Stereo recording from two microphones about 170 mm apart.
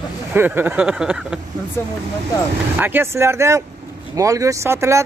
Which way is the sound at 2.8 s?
15° right (ahead or behind).